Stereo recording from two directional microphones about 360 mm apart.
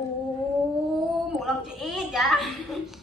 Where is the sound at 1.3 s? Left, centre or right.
Centre.